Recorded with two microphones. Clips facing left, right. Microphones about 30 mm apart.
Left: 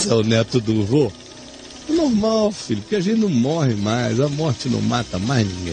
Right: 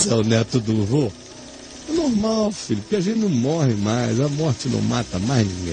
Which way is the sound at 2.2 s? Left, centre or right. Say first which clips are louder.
Left 3 dB; centre.